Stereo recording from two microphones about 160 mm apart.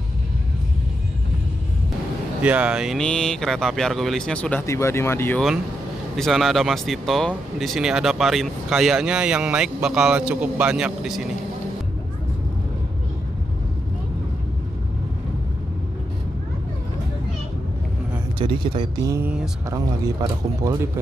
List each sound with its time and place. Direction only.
2.4 s speech: 5° right (ahead or behind); by 5.4 s 15° left (ahead or behind)
6.1 s speech: centre (ahead or behind)
18.4 s speech: 30° right (ahead or behind)
19.0 s speech: 15° right (ahead or behind)